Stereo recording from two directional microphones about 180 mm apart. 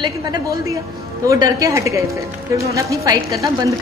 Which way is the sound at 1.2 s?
20° right (ahead or behind).